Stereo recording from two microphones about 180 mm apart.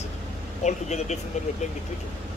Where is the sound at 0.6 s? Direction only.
40° left (ahead or behind).